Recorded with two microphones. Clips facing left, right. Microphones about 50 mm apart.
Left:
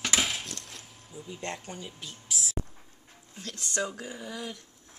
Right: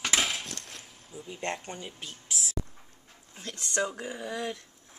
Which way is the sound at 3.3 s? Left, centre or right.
Centre.